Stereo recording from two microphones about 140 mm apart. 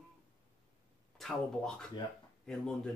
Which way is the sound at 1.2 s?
5° left (ahead or behind).